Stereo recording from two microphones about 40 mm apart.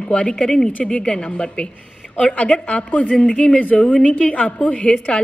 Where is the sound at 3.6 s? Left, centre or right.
Left.